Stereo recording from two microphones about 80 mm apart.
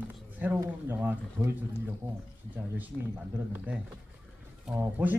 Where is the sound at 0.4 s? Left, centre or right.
Right.